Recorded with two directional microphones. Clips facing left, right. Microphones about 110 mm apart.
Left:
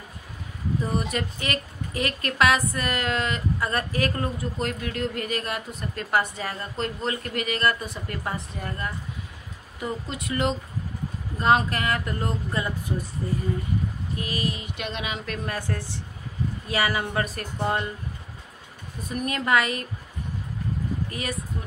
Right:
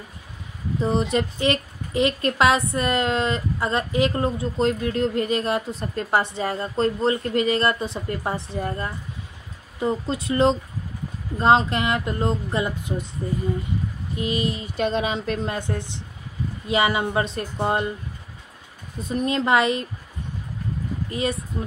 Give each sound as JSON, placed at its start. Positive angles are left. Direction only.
{"t": 0.7, "sound": "a woman's voice", "side_deg": -30}
{"t": 14.1, "sound": "a woman's voice", "side_deg": -25}
{"t": 18.9, "sound": "a woman's voice", "side_deg": -25}
{"t": 21.1, "sound": "speech", "side_deg": -25}